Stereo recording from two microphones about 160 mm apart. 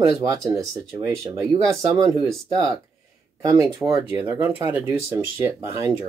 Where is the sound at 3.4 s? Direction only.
20° right (ahead or behind).